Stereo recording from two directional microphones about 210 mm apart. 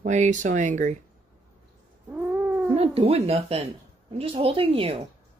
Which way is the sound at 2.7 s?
25° right (ahead or behind).